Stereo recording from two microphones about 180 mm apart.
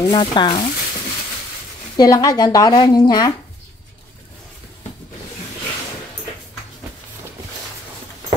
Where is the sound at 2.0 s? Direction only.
20° left (ahead or behind).